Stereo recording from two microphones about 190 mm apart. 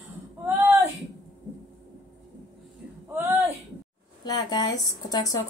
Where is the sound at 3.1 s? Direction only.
10° right (ahead or behind).